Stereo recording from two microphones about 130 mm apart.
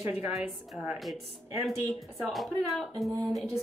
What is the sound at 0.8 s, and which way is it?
Speech, centre (ahead or behind).